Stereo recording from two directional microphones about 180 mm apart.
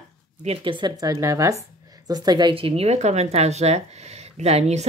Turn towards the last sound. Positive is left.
turn(degrees=-35)  # may be behind; listen again after turning